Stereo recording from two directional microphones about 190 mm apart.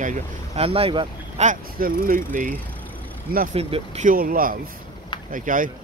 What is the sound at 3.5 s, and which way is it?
Speech, 35° right (ahead or behind).